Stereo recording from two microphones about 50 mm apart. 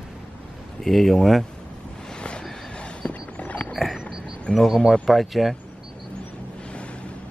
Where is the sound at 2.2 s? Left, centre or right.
Centre.